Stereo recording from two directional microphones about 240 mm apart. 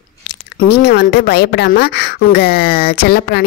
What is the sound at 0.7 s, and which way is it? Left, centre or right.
A woman's voice, left.